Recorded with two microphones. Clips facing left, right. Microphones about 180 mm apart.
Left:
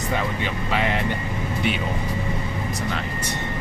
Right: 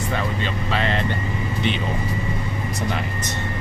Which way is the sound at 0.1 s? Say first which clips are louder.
Left 1 dB; 15° left (ahead or behind).